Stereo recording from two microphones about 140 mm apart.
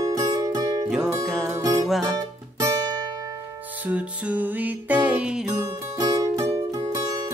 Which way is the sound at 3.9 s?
10° right (ahead or behind).